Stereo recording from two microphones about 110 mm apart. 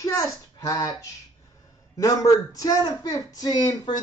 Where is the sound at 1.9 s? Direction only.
30° left (ahead or behind).